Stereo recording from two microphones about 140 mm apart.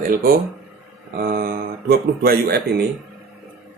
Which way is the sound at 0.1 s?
90° right.